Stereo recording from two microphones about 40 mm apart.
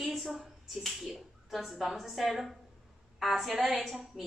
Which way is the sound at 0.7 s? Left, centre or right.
Centre.